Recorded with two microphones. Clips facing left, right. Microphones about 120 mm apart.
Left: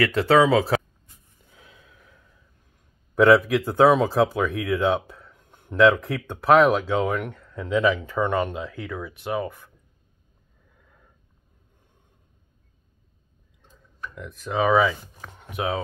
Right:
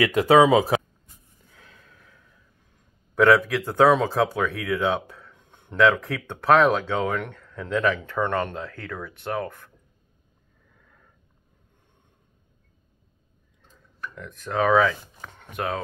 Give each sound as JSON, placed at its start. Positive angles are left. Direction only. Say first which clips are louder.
{"t": 0.0, "sound": "speech", "louder": "right 2 dB", "side_deg": -15}
{"t": 1.5, "sound": "a sound", "louder": "left 1 dB", "side_deg": 15}
{"t": 3.2, "sound": "speech", "louder": "left 2 dB", "side_deg": 5}
{"t": 10.8, "sound": "sniff", "louder": "left 1 dB", "side_deg": 10}
{"t": 14.1, "sound": "speech", "louder": "even", "side_deg": 5}